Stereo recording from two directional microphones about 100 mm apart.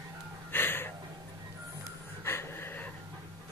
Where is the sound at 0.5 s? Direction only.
20° left (ahead or behind).